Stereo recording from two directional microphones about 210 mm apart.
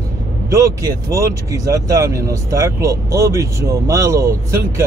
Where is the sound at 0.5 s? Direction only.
15° right (ahead or behind).